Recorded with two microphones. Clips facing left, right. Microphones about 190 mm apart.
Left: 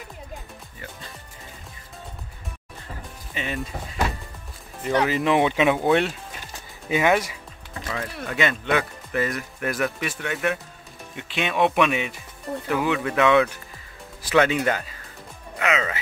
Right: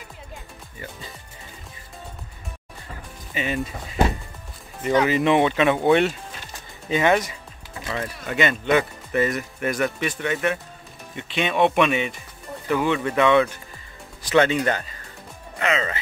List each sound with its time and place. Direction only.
3.3 s speech: centre (ahead or behind)
4.8 s speech: centre (ahead or behind)